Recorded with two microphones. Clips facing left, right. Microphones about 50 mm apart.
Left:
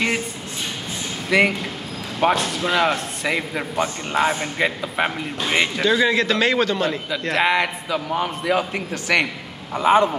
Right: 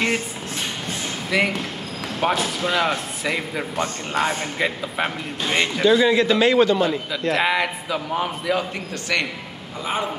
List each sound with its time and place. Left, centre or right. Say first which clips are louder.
1.3 s a man's voice: left 4 dB; centre
9.8 s a man's voice: left 10 dB; left